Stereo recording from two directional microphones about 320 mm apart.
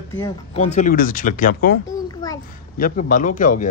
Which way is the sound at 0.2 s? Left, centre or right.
Centre.